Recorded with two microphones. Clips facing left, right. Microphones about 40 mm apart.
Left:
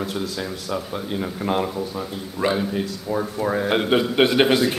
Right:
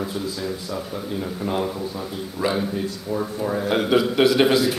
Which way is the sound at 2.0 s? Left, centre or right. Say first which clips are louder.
Left 1 dB; centre.